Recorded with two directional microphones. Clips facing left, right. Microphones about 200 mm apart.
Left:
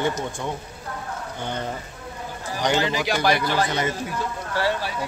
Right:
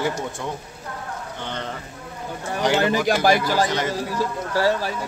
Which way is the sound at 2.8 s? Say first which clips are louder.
Right 4 dB; 50° right (ahead or behind).